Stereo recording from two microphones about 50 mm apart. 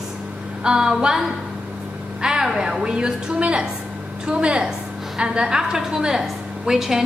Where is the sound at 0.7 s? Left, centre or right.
Centre.